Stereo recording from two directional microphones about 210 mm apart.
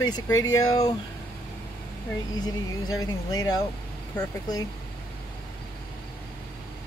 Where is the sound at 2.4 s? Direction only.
20° left (ahead or behind).